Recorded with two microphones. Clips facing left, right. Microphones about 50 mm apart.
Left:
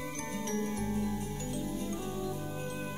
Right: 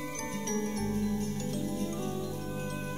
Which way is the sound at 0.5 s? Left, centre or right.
Centre.